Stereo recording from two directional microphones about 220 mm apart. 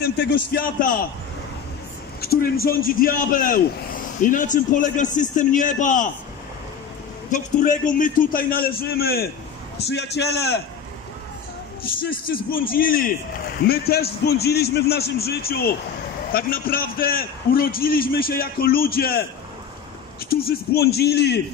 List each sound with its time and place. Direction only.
0.0 s a man's voice: 45° left (ahead or behind)
2.2 s a man's voice: 40° left (ahead or behind)
7.2 s a man's voice: 35° left (ahead or behind)
11.8 s a man's voice: 40° left (ahead or behind)
20.2 s a man's voice: 45° left (ahead or behind)